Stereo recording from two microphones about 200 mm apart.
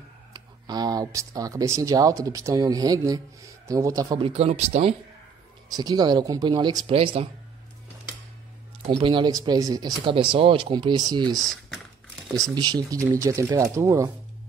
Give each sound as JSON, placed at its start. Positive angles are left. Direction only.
{"t": 0.3, "sound": "speech", "side_deg": -20}
{"t": 4.3, "sound": "speech", "side_deg": -30}
{"t": 5.7, "sound": "speech", "side_deg": -20}
{"t": 8.8, "sound": "speech", "side_deg": -30}
{"t": 11.3, "sound": "speech", "side_deg": 0}
{"t": 12.5, "sound": "speech", "side_deg": -20}